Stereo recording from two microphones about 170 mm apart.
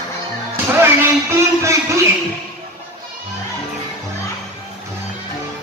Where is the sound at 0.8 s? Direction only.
15° right (ahead or behind).